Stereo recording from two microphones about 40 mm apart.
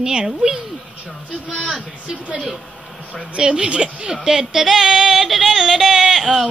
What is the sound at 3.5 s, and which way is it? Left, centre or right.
Speech, right.